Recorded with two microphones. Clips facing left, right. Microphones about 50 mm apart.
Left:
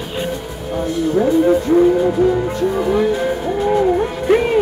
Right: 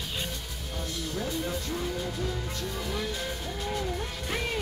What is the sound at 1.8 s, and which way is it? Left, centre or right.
Music, left.